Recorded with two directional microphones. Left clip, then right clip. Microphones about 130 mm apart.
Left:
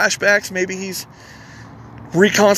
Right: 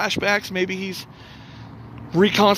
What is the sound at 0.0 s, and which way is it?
Speech, 5° right (ahead or behind).